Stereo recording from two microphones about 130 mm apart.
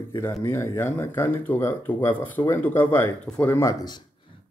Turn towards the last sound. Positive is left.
turn(degrees=15)  # may be behind; listen again after turning